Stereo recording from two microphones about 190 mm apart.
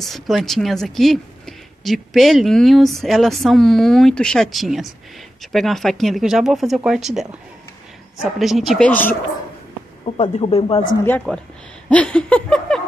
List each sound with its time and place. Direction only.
0.0 s speech: centre (ahead or behind)
10.0 s speech: 30° left (ahead or behind)
11.1 s a woman's voice: 5° left (ahead or behind)